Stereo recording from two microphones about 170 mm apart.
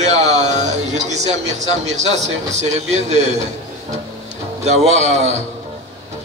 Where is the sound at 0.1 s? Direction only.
40° right (ahead or behind).